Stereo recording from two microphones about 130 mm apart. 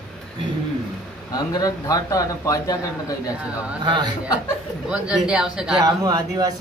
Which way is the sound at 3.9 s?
35° right (ahead or behind).